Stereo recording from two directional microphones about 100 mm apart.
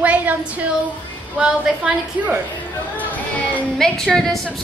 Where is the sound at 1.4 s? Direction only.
5° right (ahead or behind).